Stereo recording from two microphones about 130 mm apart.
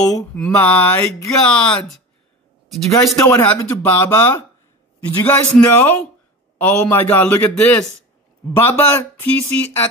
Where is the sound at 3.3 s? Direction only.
15° left (ahead or behind).